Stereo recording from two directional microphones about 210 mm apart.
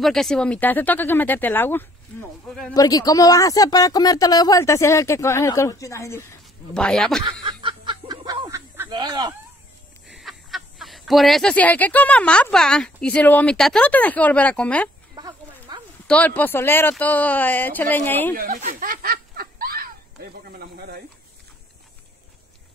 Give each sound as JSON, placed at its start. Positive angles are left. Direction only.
{"t": 0.0, "sound": "speech", "side_deg": 0}
{"t": 2.7, "sound": "speech", "side_deg": 15}
{"t": 7.4, "sound": "fowl", "side_deg": -20}
{"t": 10.0, "sound": "speech", "side_deg": 0}
{"t": 15.1, "sound": "a sound", "side_deg": -20}
{"t": 16.1, "sound": "speech", "side_deg": 10}
{"t": 18.3, "sound": "snicker", "side_deg": -40}
{"t": 20.4, "sound": "snake", "side_deg": -50}